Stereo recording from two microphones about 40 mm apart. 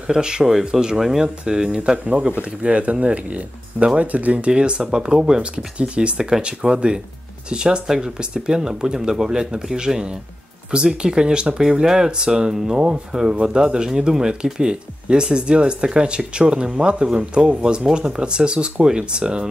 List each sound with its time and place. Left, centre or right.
0.0 s speech: centre
2.6 s speech: right
4.5 s speech: right